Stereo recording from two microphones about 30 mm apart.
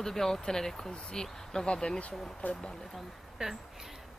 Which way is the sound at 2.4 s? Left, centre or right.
Left.